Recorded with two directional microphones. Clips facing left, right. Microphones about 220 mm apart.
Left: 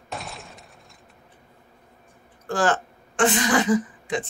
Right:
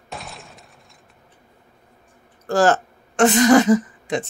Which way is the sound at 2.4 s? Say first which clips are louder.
Right 6 dB; 40° right (ahead or behind).